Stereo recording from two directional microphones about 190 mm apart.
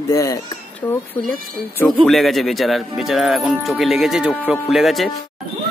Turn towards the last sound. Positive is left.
turn(degrees=0)  # may be behind; listen again after turning